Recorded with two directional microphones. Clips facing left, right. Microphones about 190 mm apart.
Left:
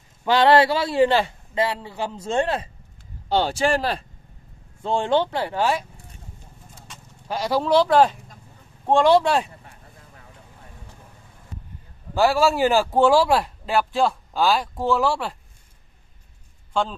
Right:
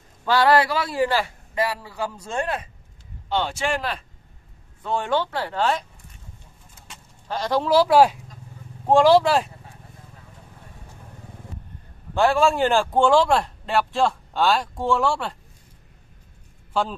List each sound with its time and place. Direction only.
0.2 s a man's voice: 20° left (ahead or behind)
7.2 s speech: 10° left (ahead or behind)
7.6 s speech: 5° right (ahead or behind)
12.1 s speech: 5° left (ahead or behind)